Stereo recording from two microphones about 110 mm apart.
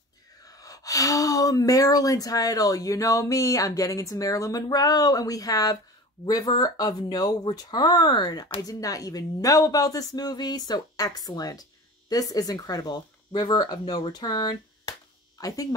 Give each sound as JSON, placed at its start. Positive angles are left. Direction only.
{"t": 0.5, "sound": "speech", "side_deg": 30}